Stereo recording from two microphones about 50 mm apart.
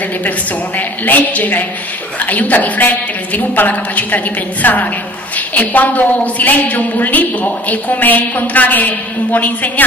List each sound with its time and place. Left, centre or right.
0.7 s a woman's voice: left